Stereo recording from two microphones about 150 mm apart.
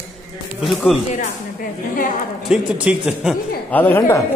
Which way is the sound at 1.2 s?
60° left (ahead or behind).